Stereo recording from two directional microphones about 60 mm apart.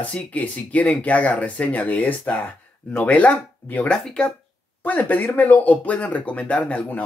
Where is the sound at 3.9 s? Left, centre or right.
Centre.